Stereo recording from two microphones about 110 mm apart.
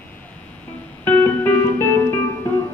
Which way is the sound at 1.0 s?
15° left (ahead or behind).